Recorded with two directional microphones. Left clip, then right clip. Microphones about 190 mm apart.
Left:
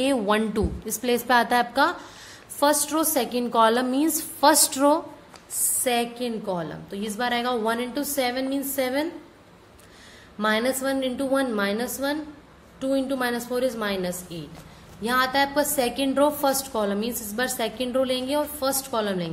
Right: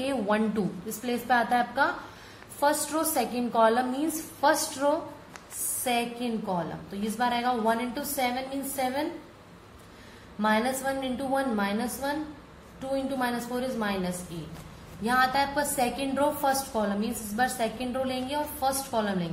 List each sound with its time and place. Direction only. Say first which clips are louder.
0.0 s a woman's voice: left 5 dB; 45° left (ahead or behind)
10.4 s a woman's voice: left 3 dB; 45° left (ahead or behind)